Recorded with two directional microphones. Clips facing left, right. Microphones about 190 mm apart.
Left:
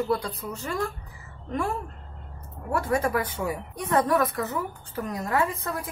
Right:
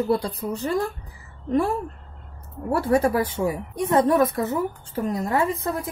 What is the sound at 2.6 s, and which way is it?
A woman's voice, 30° right (ahead or behind).